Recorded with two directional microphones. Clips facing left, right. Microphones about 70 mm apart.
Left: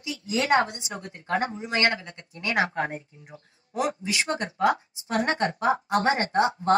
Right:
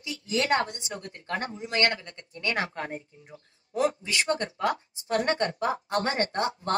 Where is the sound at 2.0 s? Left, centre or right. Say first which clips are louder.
Left 1 dB; left.